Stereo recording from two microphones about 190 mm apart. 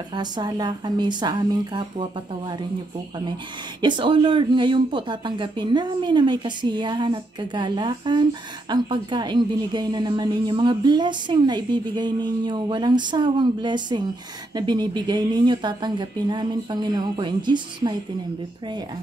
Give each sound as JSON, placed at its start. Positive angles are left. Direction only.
{"t": 0.1, "sound": "speech", "side_deg": -20}
{"t": 3.8, "sound": "speech", "side_deg": -25}